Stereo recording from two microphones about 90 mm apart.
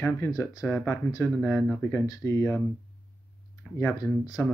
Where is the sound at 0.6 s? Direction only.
15° left (ahead or behind).